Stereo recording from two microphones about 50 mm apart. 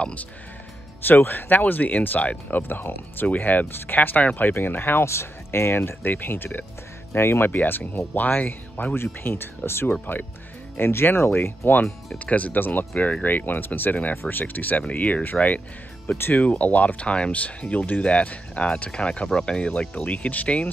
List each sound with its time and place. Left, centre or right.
0.0 s speech: left
1.0 s speech: left
5.0 s speech: left
5.8 s speech: left
7.5 s speech: left
8.9 s speech: left
12.2 s speech: left